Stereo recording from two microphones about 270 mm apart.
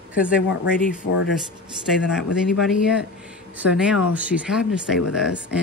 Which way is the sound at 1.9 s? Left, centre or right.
Centre.